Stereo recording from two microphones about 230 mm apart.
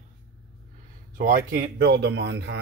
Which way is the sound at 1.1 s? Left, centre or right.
Right.